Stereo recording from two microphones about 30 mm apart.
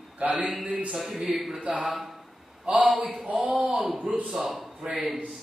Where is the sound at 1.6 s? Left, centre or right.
Right.